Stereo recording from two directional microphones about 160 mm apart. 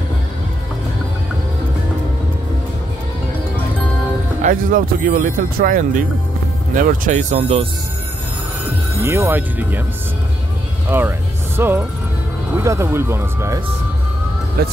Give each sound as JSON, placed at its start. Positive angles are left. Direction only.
{"t": 4.4, "sound": "speech", "side_deg": -55}
{"t": 9.0, "sound": "speech", "side_deg": -15}
{"t": 10.9, "sound": "music", "side_deg": -15}
{"t": 12.5, "sound": "speech", "side_deg": -15}